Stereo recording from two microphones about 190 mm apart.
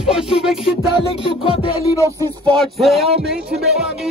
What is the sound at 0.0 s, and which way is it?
Music, 5° right (ahead or behind).